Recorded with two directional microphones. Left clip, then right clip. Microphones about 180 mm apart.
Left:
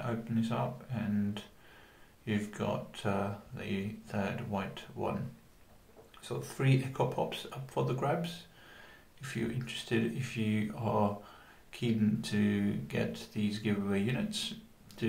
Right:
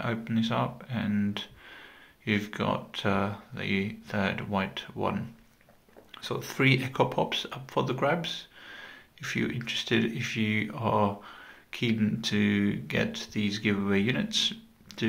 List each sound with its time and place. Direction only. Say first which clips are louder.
0.0 s speech: right 5 dB; 15° right (ahead or behind)
6.1 s speech: right 8 dB; 15° right (ahead or behind)
9.6 s speech: right 6 dB; 10° right (ahead or behind)